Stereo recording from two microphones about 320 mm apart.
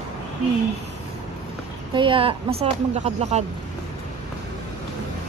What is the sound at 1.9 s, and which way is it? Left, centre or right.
A woman's voice, centre.